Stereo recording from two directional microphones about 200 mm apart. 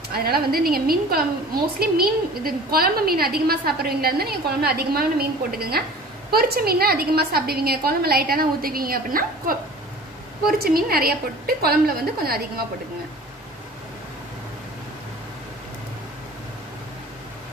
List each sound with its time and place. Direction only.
0.1 s a woman's voice: 50° right (ahead or behind)